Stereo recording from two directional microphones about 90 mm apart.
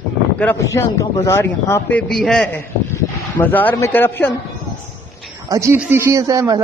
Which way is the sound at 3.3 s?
20° left (ahead or behind).